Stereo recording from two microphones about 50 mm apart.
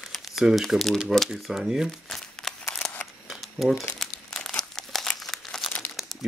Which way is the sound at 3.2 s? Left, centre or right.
Centre.